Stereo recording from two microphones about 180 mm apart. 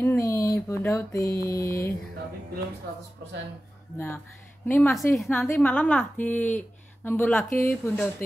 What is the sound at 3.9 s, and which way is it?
A woman's voice, 10° left (ahead or behind).